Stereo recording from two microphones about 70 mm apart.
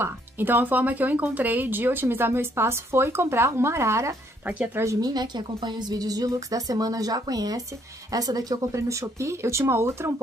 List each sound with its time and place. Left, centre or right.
0.0 s a woman's voice: right
5.0 s a woman's voice: right
8.7 s speech: right